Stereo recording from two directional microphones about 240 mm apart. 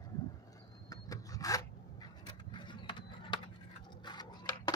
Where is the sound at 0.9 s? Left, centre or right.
Centre.